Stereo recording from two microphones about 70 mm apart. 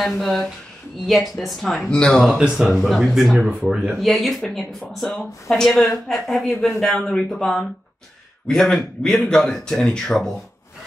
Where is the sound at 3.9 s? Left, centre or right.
Centre.